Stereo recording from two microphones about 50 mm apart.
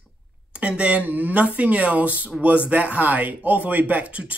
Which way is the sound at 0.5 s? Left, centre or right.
Right.